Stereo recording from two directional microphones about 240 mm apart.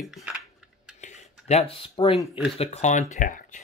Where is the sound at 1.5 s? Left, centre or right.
Left.